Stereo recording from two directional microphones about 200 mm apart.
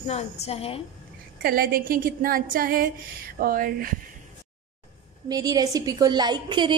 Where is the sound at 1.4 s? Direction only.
50° right (ahead or behind).